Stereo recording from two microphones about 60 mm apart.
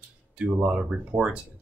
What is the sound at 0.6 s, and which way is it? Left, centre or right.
Speech, right.